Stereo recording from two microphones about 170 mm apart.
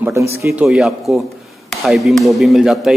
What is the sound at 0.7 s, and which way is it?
A man's voice, 5° right (ahead or behind).